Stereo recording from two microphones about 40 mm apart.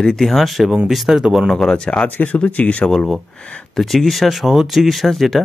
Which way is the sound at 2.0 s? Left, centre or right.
Left.